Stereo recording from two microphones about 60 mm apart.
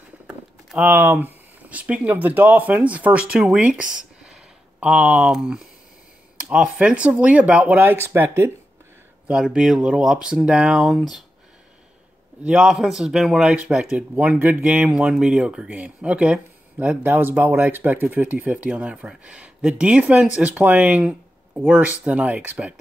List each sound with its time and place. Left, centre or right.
0.7 s speech: right
9.3 s speech: centre
10.8 s speech: centre
12.4 s speech: centre
13.5 s speech: centre
14.1 s speech: right
14.6 s speech: centre
17.0 s speech: right